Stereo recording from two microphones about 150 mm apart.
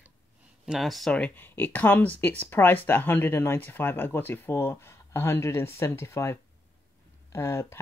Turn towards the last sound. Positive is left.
turn(degrees=15)  # may be behind; listen again after turning